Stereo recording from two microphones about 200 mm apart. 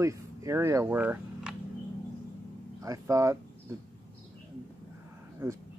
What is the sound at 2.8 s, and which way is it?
Speech, 15° right (ahead or behind).